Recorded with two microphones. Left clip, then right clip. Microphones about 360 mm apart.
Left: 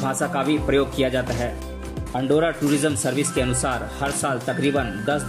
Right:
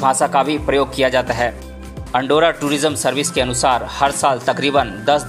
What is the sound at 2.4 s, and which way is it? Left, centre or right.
Speech, centre.